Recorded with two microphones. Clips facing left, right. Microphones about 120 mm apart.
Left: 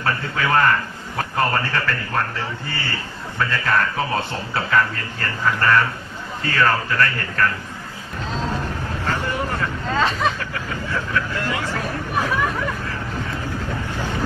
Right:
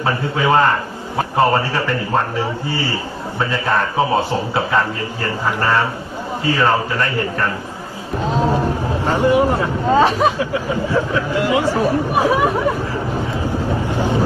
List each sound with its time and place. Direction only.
0.0 s a man's voice: 20° right (ahead or behind)
8.4 s a sound: 55° right (ahead or behind)
9.0 s speech: 15° right (ahead or behind)
13.8 s vehicle: 15° right (ahead or behind)